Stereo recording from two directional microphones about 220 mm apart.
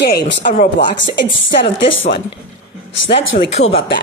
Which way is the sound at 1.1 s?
55° left (ahead or behind).